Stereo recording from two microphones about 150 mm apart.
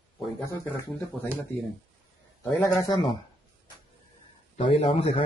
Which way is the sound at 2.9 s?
35° left (ahead or behind).